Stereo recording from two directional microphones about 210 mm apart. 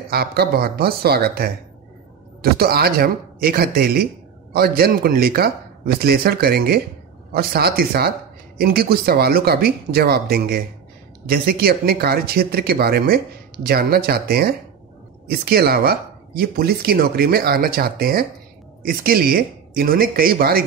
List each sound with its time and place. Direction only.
0.1 s speech: 50° right (ahead or behind)